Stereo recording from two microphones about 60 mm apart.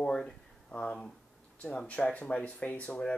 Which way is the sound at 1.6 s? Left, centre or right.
Centre.